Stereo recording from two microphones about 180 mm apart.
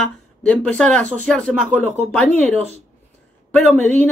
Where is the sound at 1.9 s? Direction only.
40° right (ahead or behind).